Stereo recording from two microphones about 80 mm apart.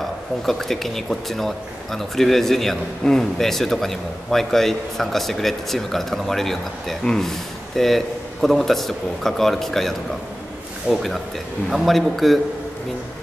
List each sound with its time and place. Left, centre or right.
0.5 s speech: centre